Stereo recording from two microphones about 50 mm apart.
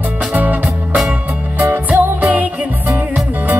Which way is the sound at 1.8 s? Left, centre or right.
Right.